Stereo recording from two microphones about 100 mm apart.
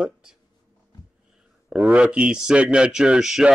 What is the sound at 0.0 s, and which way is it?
Speech, 5° right (ahead or behind).